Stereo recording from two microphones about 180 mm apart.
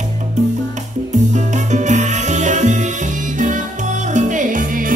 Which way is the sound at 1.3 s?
40° right (ahead or behind).